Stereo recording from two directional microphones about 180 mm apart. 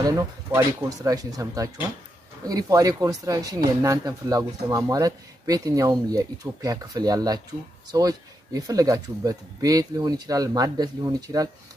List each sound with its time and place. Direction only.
0.0 s speech: 15° right (ahead or behind)